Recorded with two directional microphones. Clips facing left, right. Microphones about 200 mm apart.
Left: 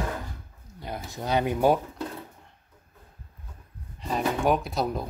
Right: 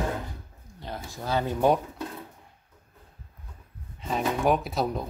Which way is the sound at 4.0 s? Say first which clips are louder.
Even; centre (ahead or behind).